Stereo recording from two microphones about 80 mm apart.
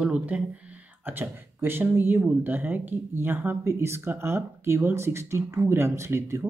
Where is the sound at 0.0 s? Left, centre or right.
Centre.